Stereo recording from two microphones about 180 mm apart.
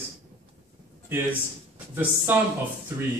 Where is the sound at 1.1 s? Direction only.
10° right (ahead or behind).